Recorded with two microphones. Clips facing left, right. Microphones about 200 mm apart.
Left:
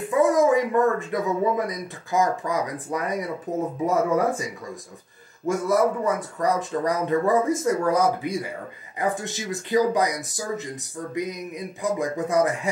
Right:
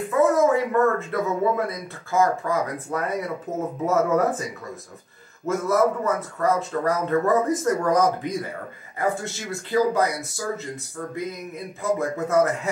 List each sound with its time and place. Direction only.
0.1 s speech: 15° left (ahead or behind)
5.5 s speech: 15° left (ahead or behind)